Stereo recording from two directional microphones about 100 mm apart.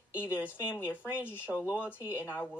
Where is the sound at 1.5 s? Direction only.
5° left (ahead or behind).